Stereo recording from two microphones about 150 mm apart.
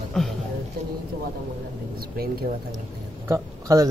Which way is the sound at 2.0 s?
90° right.